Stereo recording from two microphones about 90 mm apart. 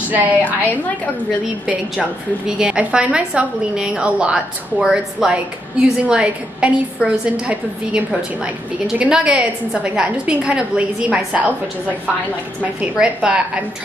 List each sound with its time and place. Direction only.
0.1 s a woman's voice: 20° right (ahead or behind)
0.4 s a woman's voice: 20° left (ahead or behind)
1.7 s a woman's voice: 10° right (ahead or behind)
12.8 s a woman's voice: 10° right (ahead or behind)